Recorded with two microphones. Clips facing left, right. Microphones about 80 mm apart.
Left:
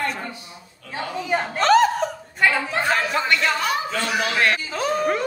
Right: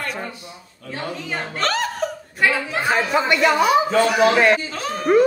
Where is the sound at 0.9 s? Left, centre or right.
Centre.